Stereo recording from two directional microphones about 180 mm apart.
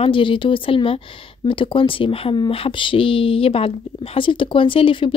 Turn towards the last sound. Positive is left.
turn(degrees=30)  # may be behind; listen again after turning